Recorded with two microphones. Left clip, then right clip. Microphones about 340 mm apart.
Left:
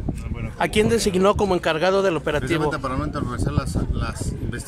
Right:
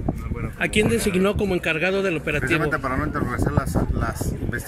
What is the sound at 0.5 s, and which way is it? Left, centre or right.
Speech, centre.